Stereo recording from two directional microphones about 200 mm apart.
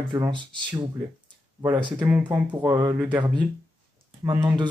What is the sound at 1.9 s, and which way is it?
Speech, 10° right (ahead or behind).